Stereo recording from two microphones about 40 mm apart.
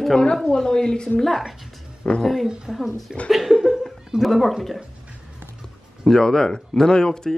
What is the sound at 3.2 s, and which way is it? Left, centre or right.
Speech, centre.